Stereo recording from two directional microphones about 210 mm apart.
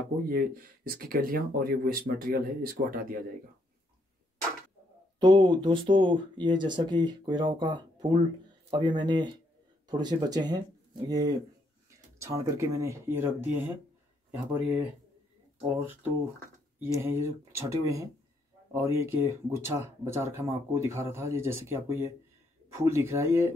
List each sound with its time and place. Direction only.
0.8 s speech: 45° right (ahead or behind)
5.2 s speech: 20° right (ahead or behind)